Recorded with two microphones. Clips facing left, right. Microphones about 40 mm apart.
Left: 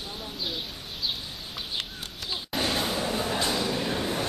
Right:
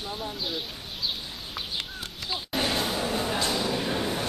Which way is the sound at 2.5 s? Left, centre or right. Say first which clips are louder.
Even; centre.